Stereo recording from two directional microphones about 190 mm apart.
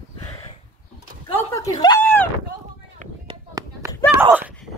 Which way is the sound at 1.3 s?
15° left (ahead or behind).